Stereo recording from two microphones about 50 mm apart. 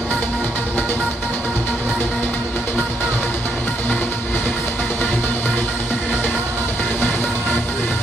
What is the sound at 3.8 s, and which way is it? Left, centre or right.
Music, left.